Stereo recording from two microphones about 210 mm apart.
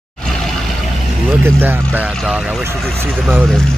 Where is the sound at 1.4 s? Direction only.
10° right (ahead or behind).